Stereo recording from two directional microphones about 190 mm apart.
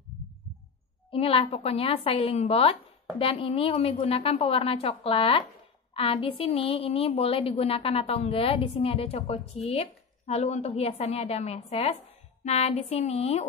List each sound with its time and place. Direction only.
1.1 s a woman's voice: 30° left (ahead or behind)